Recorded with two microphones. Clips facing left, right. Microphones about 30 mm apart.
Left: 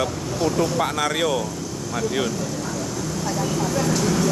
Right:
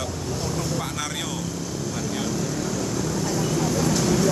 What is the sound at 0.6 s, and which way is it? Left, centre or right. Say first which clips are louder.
Speech: left 7 dB; left.